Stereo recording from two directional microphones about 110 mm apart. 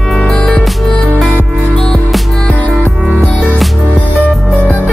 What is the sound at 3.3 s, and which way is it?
Music, 15° left (ahead or behind).